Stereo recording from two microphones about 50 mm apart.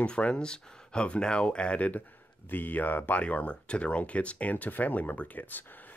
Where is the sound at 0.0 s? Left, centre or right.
Left.